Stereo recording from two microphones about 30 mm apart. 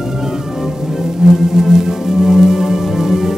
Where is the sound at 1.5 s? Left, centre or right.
Centre.